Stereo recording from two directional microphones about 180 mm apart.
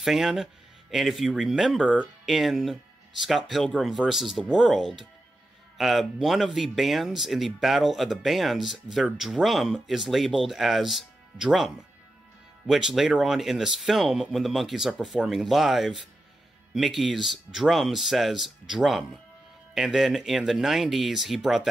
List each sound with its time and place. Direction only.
0.0 s speech: centre (ahead or behind)